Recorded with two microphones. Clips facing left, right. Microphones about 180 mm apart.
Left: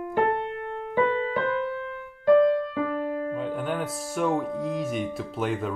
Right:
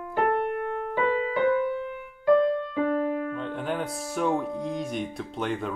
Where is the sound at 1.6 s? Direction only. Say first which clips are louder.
Right 2 dB; 20° right (ahead or behind).